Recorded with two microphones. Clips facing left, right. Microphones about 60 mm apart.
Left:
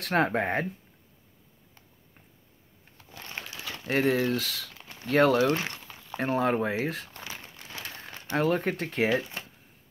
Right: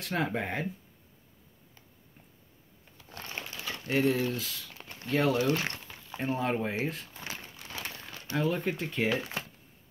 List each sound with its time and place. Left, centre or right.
0.0 s speech: left
3.8 s speech: left
4.4 s speech: left
5.0 s speech: left
5.5 s a sound: centre
6.1 s speech: left
6.9 s speech: left
8.0 s speech: left